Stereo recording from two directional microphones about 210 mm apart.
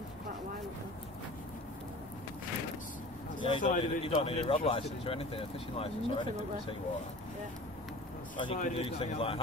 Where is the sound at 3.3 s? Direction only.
25° left (ahead or behind).